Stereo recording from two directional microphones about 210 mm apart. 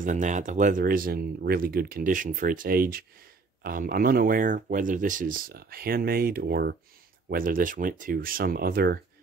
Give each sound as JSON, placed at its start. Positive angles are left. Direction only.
{"t": 0.0, "sound": "speech", "side_deg": -35}